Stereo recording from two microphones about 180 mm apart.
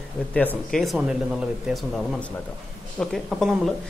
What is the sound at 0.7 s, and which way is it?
Speech, centre (ahead or behind).